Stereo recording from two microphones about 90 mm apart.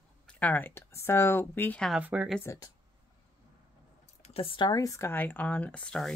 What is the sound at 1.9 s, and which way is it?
Speech, 15° right (ahead or behind).